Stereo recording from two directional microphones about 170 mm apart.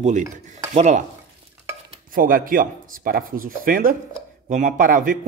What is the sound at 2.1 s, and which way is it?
Speech, 55° right (ahead or behind).